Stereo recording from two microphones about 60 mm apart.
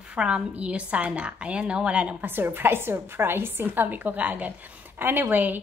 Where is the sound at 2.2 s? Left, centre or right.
Right.